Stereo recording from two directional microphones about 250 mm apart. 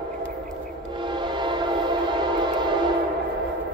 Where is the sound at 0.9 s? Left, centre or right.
Centre.